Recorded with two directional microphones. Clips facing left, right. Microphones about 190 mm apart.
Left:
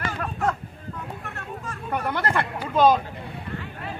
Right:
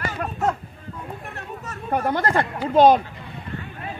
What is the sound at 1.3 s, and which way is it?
Chatter, 35° right (ahead or behind).